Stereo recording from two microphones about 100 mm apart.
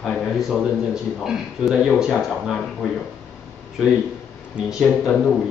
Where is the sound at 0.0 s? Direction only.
Centre (ahead or behind).